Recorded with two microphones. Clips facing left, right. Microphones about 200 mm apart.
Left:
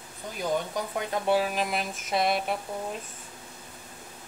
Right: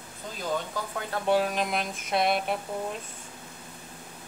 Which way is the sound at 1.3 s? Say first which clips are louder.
Right 1 dB; 5° left (ahead or behind).